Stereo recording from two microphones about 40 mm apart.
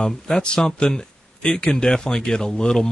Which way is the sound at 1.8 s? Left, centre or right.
Centre.